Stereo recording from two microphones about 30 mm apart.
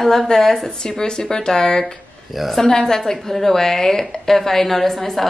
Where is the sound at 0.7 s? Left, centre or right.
Left.